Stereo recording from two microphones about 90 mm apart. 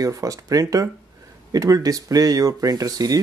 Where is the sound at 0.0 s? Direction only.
40° right (ahead or behind).